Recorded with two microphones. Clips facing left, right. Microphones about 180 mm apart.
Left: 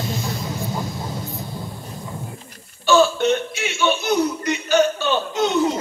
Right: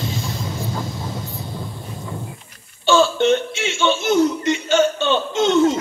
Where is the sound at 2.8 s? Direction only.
25° right (ahead or behind).